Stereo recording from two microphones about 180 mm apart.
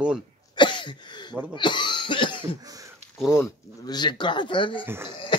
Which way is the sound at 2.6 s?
20° right (ahead or behind).